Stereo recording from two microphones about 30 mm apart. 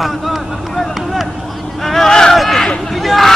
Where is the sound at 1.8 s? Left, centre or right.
Centre.